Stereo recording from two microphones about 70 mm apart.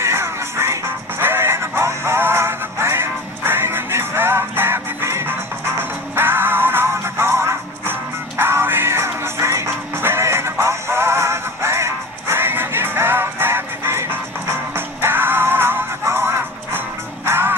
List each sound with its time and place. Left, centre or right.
0.0 s music: right